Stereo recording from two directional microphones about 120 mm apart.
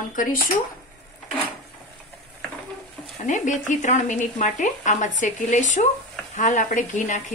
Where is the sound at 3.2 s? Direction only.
85° left.